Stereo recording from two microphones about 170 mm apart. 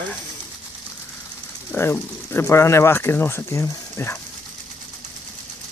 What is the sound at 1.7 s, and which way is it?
Speech, 15° left (ahead or behind).